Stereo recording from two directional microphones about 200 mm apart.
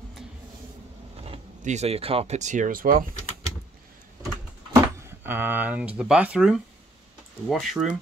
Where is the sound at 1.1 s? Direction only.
30° right (ahead or behind).